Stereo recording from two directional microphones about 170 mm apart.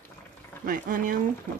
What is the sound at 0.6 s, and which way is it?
Speech, 55° right (ahead or behind).